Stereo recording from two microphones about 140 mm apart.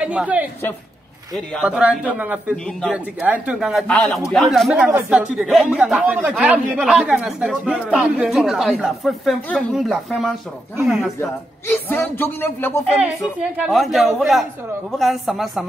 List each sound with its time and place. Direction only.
0.0 s a woman's voice: 10° right (ahead or behind)
1.6 s a man's voice: 10° right (ahead or behind)
11.1 s speech: 15° left (ahead or behind)
13.0 s speech: 5° right (ahead or behind)